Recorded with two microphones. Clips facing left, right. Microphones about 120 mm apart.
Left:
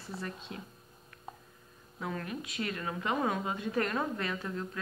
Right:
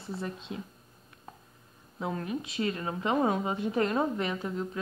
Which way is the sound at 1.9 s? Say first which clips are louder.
Right 4 dB; 25° right (ahead or behind).